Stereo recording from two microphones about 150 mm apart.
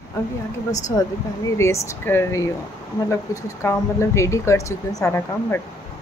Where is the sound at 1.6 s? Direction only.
20° left (ahead or behind).